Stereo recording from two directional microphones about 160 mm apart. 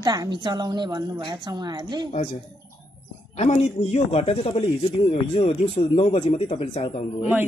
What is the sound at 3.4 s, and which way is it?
A man's voice, 45° left (ahead or behind).